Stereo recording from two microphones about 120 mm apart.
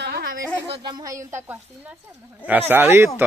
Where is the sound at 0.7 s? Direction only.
40° right (ahead or behind).